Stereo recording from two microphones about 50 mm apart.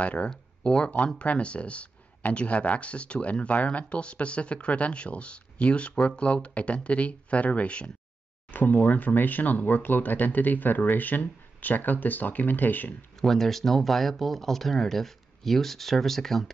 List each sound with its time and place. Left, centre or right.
0.0 s speech: left
8.5 s speech: left
13.1 s speech: centre